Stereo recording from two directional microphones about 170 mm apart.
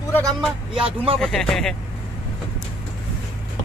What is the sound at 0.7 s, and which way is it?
Speech, 30° right (ahead or behind).